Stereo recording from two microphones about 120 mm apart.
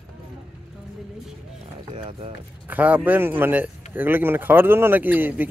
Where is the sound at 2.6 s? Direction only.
15° right (ahead or behind).